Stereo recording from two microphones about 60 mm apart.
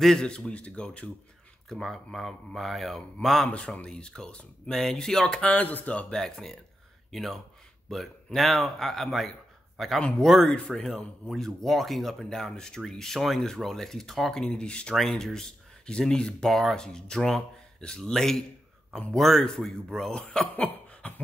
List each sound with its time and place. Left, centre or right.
0.0 s speech: centre
3.4 s speech: left
5.5 s speech: left
6.1 s speech: centre
15.0 s speech: centre; by 21.1 s left